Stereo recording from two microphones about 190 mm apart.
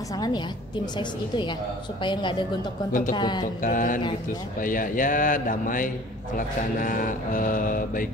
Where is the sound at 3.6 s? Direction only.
45° left (ahead or behind).